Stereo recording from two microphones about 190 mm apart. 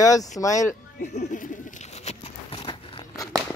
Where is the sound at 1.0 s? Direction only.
40° left (ahead or behind).